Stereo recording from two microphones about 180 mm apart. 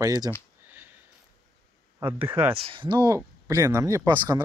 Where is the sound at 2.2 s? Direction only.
10° right (ahead or behind).